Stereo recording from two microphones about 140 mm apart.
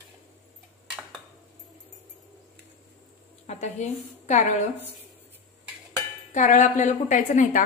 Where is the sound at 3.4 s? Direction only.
55° left (ahead or behind).